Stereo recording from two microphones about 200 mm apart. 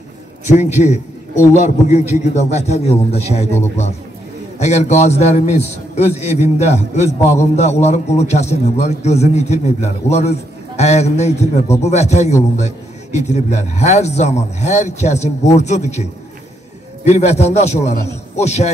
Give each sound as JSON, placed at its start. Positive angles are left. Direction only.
{"t": 0.5, "sound": "a man's voice", "side_deg": 35}
{"t": 4.6, "sound": "a man's voice", "side_deg": 35}